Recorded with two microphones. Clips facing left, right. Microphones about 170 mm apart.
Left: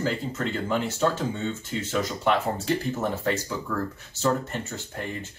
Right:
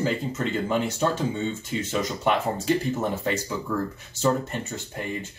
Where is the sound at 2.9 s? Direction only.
15° right (ahead or behind).